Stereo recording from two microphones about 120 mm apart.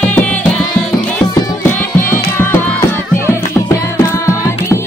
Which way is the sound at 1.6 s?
20° left (ahead or behind).